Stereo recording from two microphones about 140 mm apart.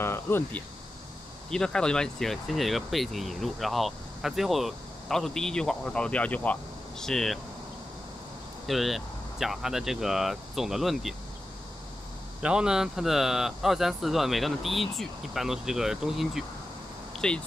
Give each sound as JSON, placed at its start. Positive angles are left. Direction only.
{"t": 0.0, "sound": "speech", "side_deg": 15}
{"t": 8.6, "sound": "speech", "side_deg": 0}
{"t": 12.4, "sound": "speech", "side_deg": -5}
{"t": 17.1, "sound": "a sound", "side_deg": 5}